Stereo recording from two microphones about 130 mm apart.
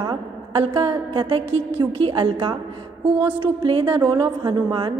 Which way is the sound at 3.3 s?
40° right (ahead or behind).